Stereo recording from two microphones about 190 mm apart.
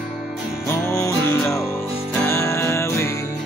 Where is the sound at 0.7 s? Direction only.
15° left (ahead or behind).